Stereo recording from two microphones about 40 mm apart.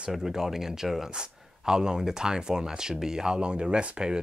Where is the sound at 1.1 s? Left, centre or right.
Centre.